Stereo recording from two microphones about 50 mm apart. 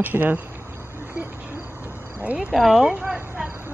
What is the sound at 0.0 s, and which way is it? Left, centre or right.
Speech, right.